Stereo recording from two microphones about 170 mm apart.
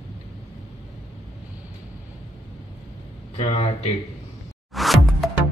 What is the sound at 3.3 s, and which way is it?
Speech, 40° left (ahead or behind).